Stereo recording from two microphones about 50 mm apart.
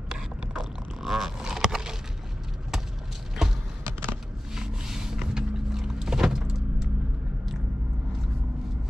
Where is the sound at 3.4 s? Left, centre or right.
Centre.